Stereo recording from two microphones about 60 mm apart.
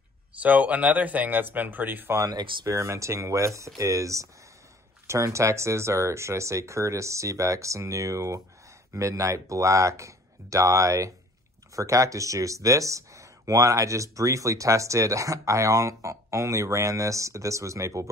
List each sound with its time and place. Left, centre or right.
0.4 s speech: right
2.1 s speech: right